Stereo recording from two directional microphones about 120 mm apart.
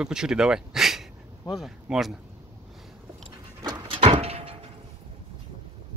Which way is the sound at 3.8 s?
50° right (ahead or behind).